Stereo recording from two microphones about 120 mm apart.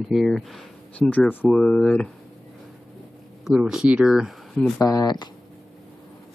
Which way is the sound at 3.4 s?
5° right (ahead or behind).